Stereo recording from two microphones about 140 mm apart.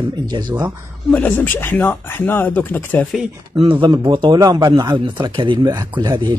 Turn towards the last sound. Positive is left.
turn(degrees=-35)  # may be behind; listen again after turning